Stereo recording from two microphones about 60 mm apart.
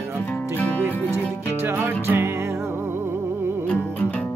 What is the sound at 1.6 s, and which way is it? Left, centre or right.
Music, right.